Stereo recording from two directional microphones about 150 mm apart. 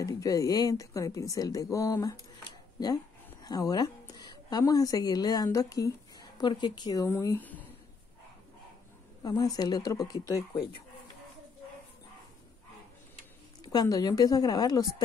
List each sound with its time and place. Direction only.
0.0 s speech: 25° left (ahead or behind)
3.4 s a woman's voice: 25° left (ahead or behind)
9.2 s speech: 25° left (ahead or behind)
13.6 s speech: 25° left (ahead or behind)